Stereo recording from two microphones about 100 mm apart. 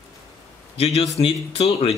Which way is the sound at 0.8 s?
75° left (ahead or behind).